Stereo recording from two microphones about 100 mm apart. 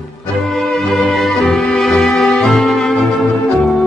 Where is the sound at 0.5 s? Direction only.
5° left (ahead or behind).